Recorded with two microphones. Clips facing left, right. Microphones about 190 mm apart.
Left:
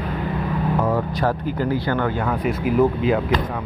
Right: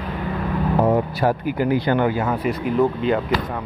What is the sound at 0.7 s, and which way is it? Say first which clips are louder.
Music: right 4 dB; 25° right (ahead or behind).